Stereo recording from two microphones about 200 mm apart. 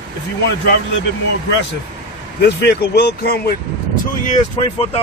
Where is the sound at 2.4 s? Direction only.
55° left (ahead or behind).